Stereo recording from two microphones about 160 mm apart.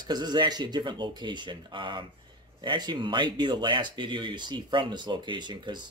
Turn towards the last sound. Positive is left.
turn(degrees=-30)  # may be behind; listen again after turning